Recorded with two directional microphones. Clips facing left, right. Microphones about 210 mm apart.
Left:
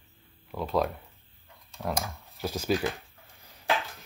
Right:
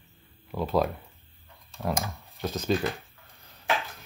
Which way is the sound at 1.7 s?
Centre (ahead or behind).